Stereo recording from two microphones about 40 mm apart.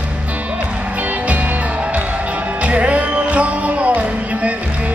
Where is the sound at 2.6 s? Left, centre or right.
Right.